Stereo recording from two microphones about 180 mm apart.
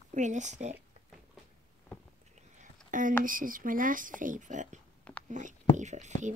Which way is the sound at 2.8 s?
45° right (ahead or behind).